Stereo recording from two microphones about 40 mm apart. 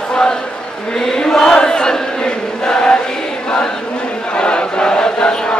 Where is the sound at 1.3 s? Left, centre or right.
Centre.